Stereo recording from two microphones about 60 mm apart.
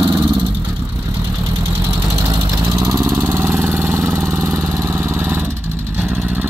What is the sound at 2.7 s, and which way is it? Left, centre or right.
Vehicle, right.